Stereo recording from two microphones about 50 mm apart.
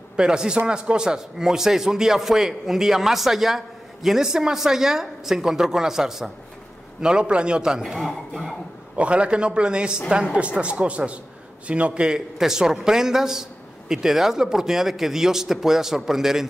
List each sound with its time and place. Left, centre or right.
0.1 s a man's voice: centre
8.9 s a man's voice: right; by 16.4 s centre